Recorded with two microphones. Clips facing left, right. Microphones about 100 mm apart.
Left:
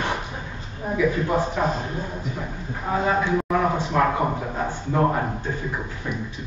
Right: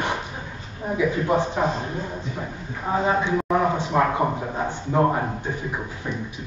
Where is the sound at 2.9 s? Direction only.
20° right (ahead or behind).